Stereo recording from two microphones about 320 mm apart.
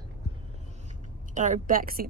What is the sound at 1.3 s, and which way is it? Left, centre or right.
Speech, right.